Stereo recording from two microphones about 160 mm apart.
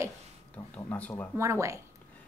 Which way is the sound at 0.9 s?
15° left (ahead or behind).